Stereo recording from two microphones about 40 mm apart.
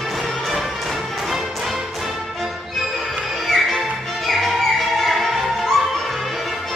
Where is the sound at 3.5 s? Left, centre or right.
Centre.